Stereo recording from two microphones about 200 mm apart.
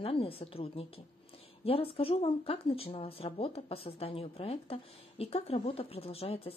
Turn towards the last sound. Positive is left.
turn(degrees=30)  # may be behind; listen again after turning